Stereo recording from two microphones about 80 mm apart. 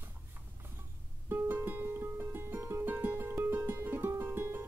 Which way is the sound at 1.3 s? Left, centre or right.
Right.